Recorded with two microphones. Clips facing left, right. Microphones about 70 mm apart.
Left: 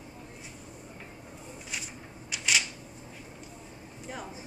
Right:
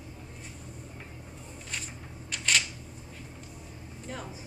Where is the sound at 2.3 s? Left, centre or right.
Centre.